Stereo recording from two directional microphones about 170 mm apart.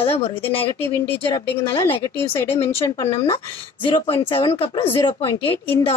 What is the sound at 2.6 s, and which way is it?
Speech, 15° left (ahead or behind).